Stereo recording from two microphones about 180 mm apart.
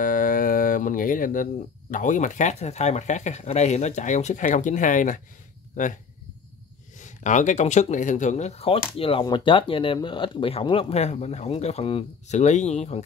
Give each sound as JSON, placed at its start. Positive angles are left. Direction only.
{"t": 0.0, "sound": "speech", "side_deg": 50}
{"t": 7.0, "sound": "speech", "side_deg": 45}